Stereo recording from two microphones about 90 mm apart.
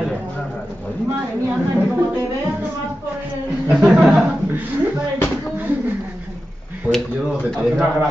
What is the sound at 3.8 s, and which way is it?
Speech, 5° right (ahead or behind).